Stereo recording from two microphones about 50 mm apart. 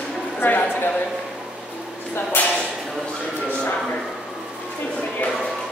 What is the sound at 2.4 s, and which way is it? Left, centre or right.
Speech, left.